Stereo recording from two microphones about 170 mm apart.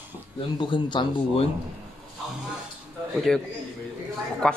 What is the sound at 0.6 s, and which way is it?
Speech, 25° left (ahead or behind).